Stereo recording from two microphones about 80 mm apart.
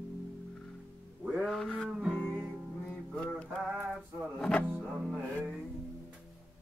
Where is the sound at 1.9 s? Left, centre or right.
Centre.